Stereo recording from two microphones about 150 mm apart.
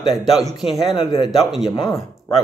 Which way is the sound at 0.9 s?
30° left (ahead or behind).